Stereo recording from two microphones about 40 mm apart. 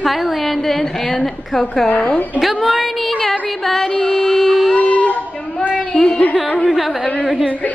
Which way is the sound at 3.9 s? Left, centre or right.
Left.